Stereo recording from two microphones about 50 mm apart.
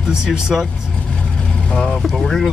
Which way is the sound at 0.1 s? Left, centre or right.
Centre.